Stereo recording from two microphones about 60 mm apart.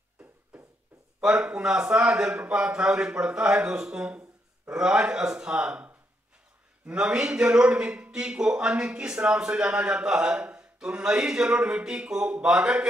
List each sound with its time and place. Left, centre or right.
0.2 s a sound: right
1.2 s a man's voice: centre
6.9 s a man's voice: centre